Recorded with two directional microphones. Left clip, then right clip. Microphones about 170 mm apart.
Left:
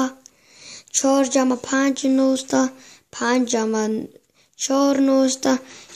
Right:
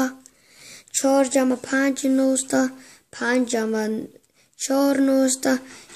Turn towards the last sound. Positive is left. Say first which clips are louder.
# left 2 dB
turn(degrees=25)  # may be behind; listen again after turning